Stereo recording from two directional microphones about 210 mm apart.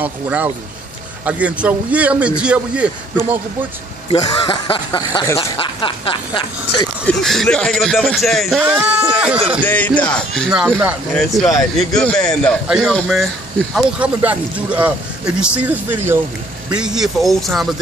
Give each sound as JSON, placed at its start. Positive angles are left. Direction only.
{"t": 0.0, "sound": "speech", "side_deg": -5}
{"t": 4.1, "sound": "speech", "side_deg": 25}
{"t": 7.1, "sound": "speech", "side_deg": 5}
{"t": 9.9, "sound": "speech", "side_deg": 5}